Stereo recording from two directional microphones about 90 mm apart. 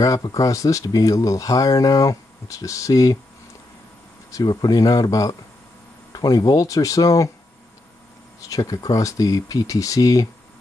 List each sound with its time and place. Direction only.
0.0 s speech: 40° left (ahead or behind)
4.3 s speech: 50° left (ahead or behind)
8.4 s speech: 40° left (ahead or behind)